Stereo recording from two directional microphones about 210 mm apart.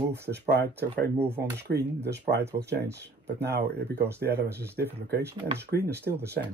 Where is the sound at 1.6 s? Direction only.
50° right (ahead or behind).